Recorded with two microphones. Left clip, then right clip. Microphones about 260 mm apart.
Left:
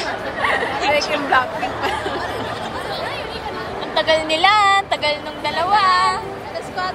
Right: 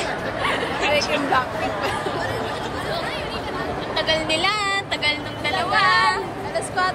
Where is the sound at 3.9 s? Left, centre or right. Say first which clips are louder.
Left 5 dB; centre.